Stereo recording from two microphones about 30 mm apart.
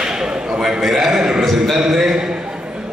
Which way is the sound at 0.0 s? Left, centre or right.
Right.